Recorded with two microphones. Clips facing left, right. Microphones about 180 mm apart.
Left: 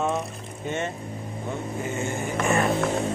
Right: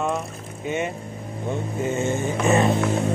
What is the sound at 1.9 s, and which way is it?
Vehicle, 20° right (ahead or behind).